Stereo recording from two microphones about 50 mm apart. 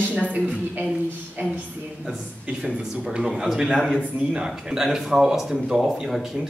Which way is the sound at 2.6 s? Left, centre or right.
Centre.